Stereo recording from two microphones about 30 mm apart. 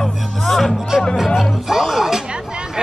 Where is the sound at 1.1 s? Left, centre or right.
Centre.